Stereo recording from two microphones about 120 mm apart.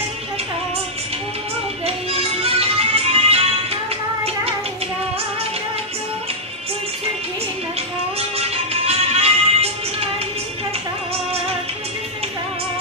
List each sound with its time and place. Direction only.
2.1 s music: 55° right (ahead or behind)
8.2 s music: 60° right (ahead or behind)